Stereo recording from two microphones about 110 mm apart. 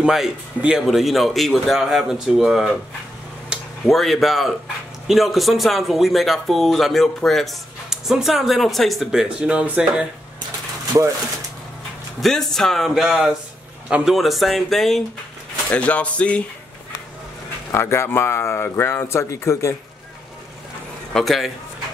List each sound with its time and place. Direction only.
0.0 s speech: 5° right (ahead or behind)
3.8 s speech: centre (ahead or behind)
12.2 s speech: 5° left (ahead or behind)
17.6 s speech: 25° left (ahead or behind)
21.1 s a man's voice: centre (ahead or behind)